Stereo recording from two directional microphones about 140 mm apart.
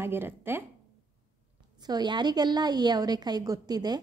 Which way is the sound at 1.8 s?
30° right (ahead or behind).